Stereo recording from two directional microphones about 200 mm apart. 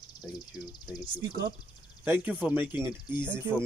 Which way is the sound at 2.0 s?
10° right (ahead or behind).